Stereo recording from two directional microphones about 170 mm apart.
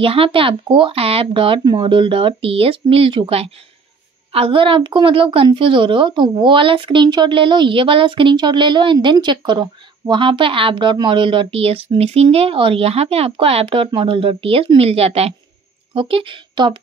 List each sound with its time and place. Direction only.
0.0 s a woman's voice: 35° right (ahead or behind)